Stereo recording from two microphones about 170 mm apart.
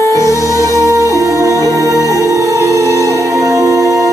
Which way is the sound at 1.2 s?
20° right (ahead or behind).